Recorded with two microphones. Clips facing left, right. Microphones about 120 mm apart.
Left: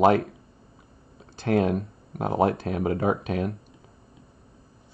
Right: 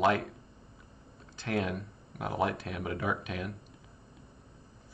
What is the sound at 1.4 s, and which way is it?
Speech, 40° left (ahead or behind).